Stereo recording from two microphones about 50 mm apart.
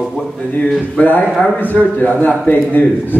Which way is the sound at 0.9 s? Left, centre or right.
Left.